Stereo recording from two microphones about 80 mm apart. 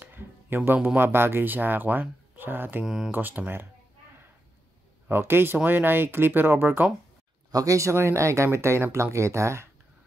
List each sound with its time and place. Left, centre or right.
0.0 s a sound: right
0.9 s speech: right
2.8 s speech: centre
3.1 s speech: right
5.0 s speech: right
7.5 s speech: right